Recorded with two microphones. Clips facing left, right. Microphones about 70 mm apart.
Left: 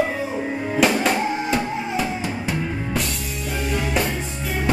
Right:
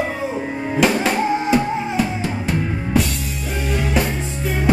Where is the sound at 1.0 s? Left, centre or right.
Centre.